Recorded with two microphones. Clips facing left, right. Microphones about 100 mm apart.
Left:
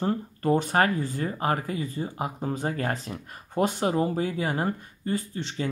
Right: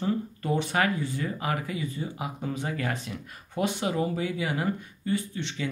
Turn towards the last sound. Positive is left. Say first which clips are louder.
# even
turn(degrees=40)  # may be behind; listen again after turning